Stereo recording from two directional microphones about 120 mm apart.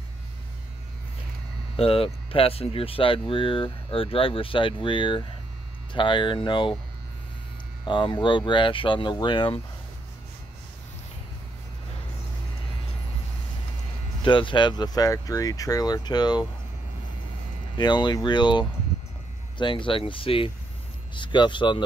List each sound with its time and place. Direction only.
1.8 s speech: 50° left (ahead or behind)
7.8 s speech: 40° left (ahead or behind)
14.2 s speech: 45° left (ahead or behind)
17.7 s speech: 40° left (ahead or behind)